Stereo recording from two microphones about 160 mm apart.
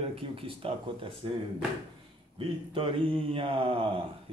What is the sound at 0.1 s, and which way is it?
Speech, 35° right (ahead or behind).